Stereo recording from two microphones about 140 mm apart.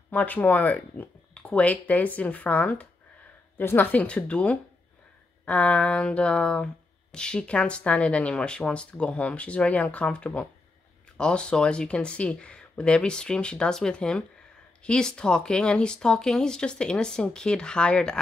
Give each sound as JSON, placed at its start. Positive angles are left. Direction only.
{"t": 0.1, "sound": "speech", "side_deg": 10}